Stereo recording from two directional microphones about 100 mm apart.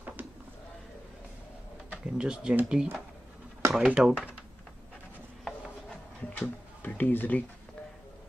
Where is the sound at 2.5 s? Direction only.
15° right (ahead or behind).